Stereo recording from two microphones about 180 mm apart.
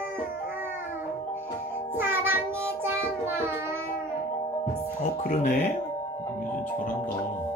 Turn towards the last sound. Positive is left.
turn(degrees=45)  # may be behind; listen again after turning